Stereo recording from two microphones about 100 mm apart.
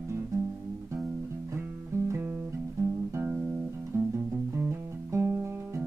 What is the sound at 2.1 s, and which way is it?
Music, 25° right (ahead or behind).